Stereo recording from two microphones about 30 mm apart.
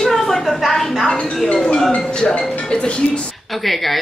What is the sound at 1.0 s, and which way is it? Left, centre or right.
Speech, left.